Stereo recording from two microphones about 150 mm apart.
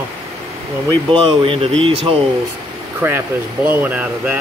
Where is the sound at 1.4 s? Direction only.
35° right (ahead or behind).